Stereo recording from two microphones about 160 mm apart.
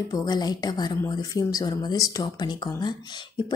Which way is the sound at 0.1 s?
25° left (ahead or behind).